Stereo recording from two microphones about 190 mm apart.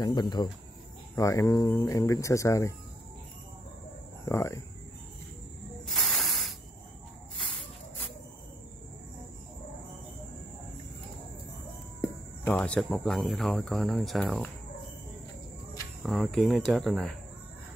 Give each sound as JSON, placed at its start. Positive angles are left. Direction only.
{"t": 0.0, "sound": "speech", "side_deg": 20}
{"t": 4.3, "sound": "speech", "side_deg": 15}
{"t": 5.9, "sound": "hiss", "side_deg": 0}
{"t": 12.0, "sound": "speech", "side_deg": 10}
{"t": 16.0, "sound": "speech", "side_deg": 0}